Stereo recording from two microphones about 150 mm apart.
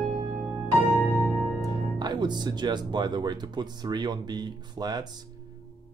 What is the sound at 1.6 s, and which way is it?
Speech, 30° right (ahead or behind).